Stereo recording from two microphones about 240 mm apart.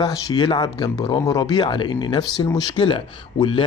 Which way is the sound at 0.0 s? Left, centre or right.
Centre.